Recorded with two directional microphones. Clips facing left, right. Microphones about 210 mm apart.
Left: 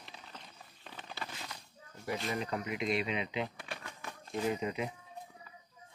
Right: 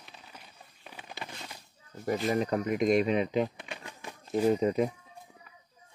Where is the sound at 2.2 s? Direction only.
45° right (ahead or behind).